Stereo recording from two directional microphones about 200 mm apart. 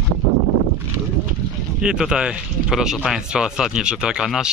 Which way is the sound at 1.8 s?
5° right (ahead or behind).